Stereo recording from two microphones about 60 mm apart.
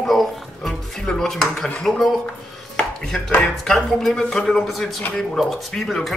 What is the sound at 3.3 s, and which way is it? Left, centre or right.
Speech, centre.